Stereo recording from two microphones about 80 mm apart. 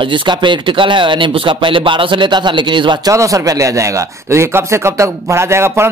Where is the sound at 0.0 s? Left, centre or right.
Right.